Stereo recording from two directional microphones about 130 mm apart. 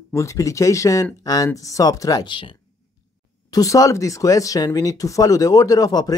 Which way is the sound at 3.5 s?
25° left (ahead or behind).